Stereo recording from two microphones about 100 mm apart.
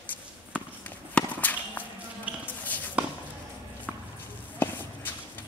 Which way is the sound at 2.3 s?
15° right (ahead or behind).